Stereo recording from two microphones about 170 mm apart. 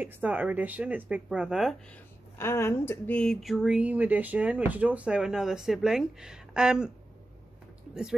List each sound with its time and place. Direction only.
0.0 s speech: 10° right (ahead or behind)
2.3 s speech: 15° left (ahead or behind); by 6.9 s 5° right (ahead or behind)